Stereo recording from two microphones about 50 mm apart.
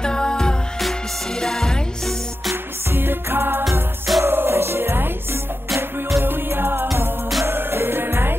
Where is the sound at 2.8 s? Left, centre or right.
Right.